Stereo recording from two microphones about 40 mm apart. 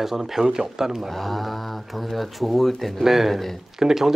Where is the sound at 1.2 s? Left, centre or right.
Centre.